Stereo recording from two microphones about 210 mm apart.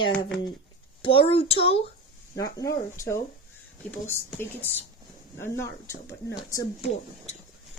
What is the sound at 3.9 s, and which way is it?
Speech, 10° left (ahead or behind).